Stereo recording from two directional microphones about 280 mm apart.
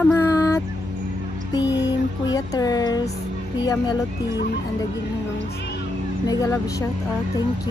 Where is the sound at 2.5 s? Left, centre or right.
Centre.